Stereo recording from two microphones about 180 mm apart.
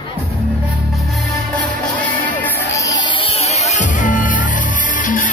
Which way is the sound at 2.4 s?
20° left (ahead or behind).